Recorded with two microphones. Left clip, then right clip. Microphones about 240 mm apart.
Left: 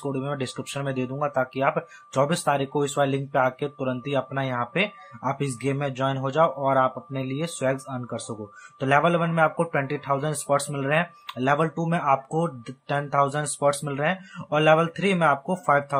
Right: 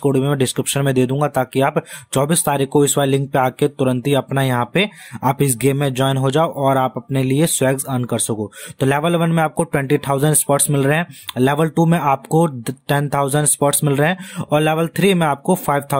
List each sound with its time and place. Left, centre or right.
0.0 s speech: right